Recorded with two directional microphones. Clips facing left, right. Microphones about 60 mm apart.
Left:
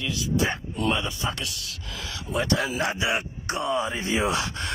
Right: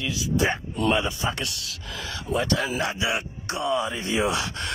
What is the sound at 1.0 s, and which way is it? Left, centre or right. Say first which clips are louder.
Speech: right 2 dB; right.